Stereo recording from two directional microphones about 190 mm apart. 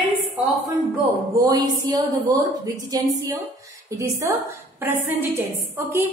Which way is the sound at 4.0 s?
15° right (ahead or behind).